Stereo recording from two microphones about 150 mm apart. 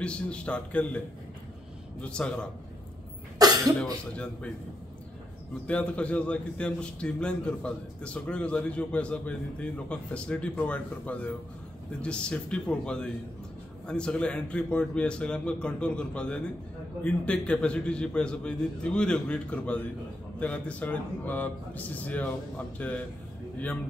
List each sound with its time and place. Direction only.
0.0 s a man's voice: 5° left (ahead or behind)
3.3 s cough: 25° right (ahead or behind)
3.8 s a man's voice: 5° left (ahead or behind)
5.7 s a man's voice: 10° left (ahead or behind)